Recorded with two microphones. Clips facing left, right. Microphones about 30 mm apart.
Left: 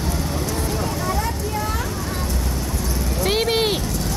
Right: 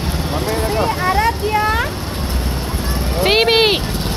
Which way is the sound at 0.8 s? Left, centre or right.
Right.